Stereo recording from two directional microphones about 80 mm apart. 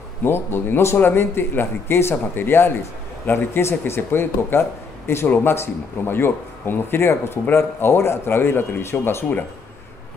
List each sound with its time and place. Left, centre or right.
0.2 s a man's voice: left